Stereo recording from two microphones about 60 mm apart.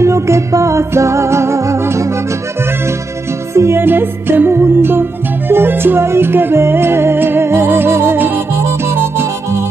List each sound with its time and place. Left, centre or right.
0.0 s music: right
3.5 s music: right
3.8 s music: right